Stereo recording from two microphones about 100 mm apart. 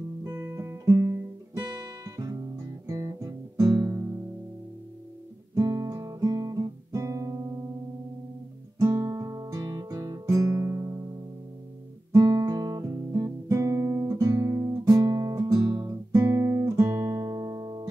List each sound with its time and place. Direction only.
0.2 s guitar: 35° right (ahead or behind)
5.5 s guitar: 35° right (ahead or behind)
8.9 s music: 25° right (ahead or behind)
9.2 s guitar: 35° right (ahead or behind)
12.1 s guitar: 30° right (ahead or behind)